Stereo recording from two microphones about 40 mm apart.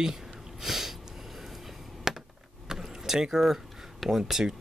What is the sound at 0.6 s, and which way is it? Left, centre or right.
Sniff, centre.